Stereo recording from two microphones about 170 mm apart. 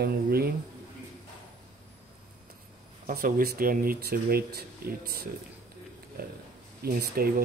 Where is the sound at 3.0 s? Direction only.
55° right (ahead or behind).